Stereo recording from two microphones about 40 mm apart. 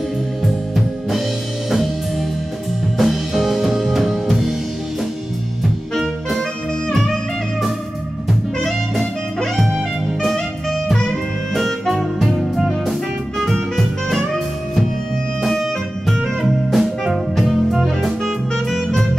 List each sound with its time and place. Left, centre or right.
3.0 s music: centre
5.6 s music: centre
10.2 s music: centre
16.1 s music: centre